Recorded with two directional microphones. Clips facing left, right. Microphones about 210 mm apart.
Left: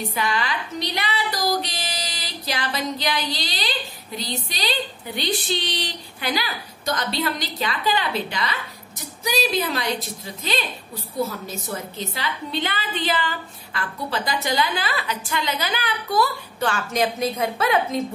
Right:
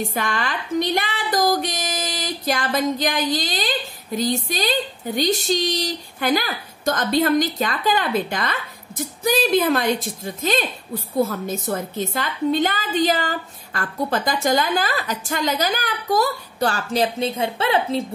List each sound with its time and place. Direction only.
0.1 s a woman's voice: 45° right (ahead or behind); by 18.0 s 30° right (ahead or behind)